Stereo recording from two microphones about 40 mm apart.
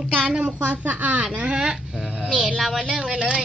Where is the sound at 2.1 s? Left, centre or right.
Right.